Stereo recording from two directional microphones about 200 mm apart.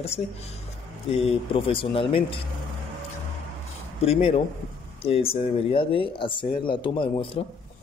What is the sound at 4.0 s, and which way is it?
A man's voice, 30° left (ahead or behind).